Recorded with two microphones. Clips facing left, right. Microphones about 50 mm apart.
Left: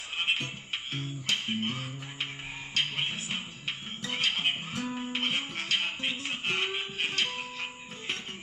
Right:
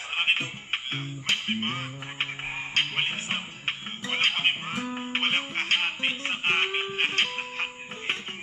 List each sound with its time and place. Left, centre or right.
0.1 s music: right